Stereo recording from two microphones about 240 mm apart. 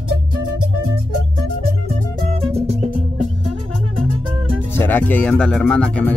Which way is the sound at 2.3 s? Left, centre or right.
Right.